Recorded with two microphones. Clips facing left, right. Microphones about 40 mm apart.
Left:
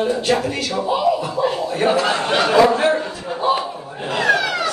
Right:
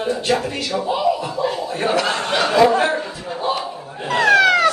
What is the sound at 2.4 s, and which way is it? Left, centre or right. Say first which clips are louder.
Speech: even; centre.